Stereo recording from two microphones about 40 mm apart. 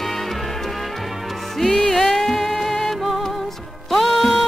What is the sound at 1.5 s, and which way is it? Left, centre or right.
Music, centre.